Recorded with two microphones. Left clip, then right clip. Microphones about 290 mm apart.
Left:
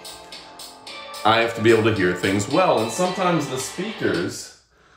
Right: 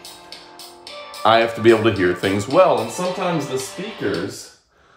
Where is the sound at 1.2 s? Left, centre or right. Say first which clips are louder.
Right 3 dB; centre.